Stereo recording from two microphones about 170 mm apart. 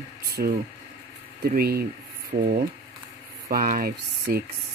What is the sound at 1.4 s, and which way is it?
Speech, 65° right (ahead or behind).